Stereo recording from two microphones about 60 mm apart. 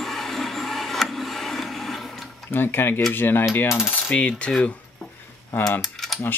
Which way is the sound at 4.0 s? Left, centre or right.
Centre.